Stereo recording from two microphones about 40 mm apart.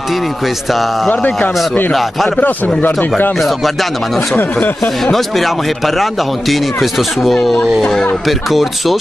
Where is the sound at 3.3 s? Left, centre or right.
Centre.